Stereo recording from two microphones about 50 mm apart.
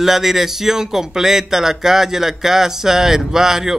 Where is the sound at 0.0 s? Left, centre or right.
Centre.